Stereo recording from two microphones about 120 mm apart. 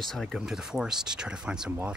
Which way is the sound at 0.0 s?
Centre (ahead or behind).